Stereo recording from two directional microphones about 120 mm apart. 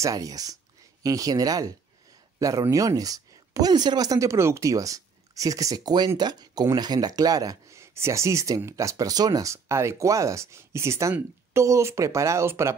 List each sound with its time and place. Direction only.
0.0 s speech: 30° right (ahead or behind)